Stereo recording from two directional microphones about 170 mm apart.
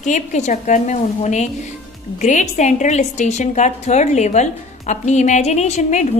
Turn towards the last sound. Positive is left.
turn(degrees=40)  # may be behind; listen again after turning